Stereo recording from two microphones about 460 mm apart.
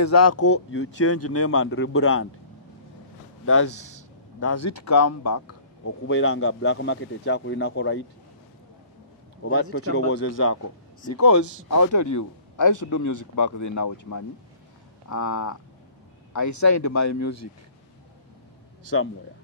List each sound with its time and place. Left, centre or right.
0.0 s speech: left
3.4 s speech: left
9.4 s speech: left